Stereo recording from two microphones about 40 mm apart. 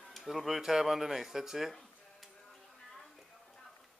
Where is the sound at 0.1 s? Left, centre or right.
Centre.